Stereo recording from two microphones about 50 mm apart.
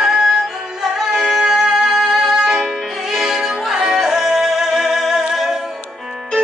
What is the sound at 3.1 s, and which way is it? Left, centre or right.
Music, centre.